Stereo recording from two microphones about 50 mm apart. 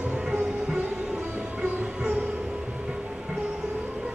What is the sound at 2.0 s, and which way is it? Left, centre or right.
Music, right.